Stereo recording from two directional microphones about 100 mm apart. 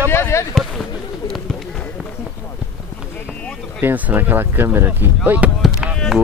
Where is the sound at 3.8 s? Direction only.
20° right (ahead or behind).